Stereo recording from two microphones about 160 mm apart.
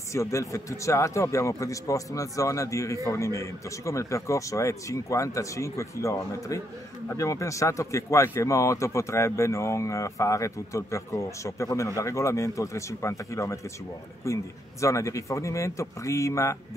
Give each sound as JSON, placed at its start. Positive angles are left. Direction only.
{"t": 0.1, "sound": "speech", "side_deg": 20}